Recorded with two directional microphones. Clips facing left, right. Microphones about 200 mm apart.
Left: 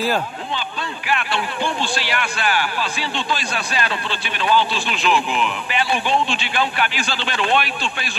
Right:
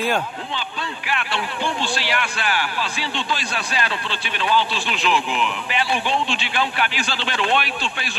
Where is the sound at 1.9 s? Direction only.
50° left (ahead or behind).